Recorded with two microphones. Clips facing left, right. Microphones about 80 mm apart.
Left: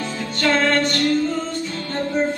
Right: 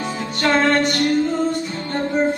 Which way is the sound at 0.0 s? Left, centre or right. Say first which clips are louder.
Right 1 dB; right.